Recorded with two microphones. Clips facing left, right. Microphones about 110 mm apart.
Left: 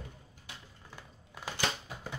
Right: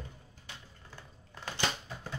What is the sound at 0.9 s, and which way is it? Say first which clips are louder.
Crushing: left 1 dB; 15° left (ahead or behind).